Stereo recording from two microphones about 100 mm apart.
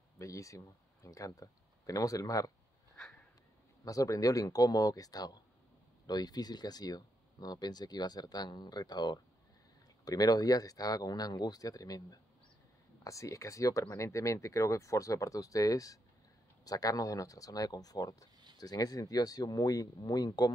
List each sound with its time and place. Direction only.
0.2 s speech: 35° left (ahead or behind)
3.8 s speech: 35° left (ahead or behind)